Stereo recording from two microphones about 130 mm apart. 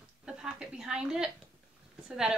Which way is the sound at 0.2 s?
5° right (ahead or behind).